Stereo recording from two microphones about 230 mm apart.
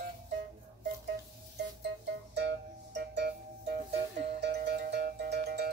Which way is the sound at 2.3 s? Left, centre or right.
Right.